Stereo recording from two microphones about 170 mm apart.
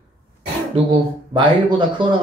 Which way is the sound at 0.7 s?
30° right (ahead or behind).